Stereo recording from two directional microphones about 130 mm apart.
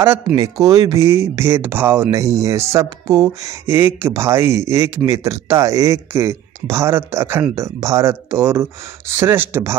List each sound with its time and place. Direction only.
0.0 s speech: 20° right (ahead or behind)
2.0 s speech: 25° right (ahead or behind)